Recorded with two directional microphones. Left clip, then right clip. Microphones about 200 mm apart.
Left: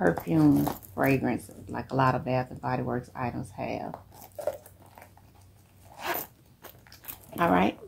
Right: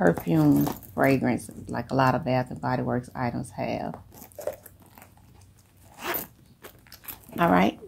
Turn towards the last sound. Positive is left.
turn(degrees=-45)  # may be behind; listen again after turning